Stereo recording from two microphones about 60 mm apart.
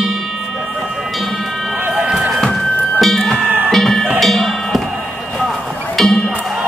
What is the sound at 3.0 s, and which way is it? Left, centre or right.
Music, centre.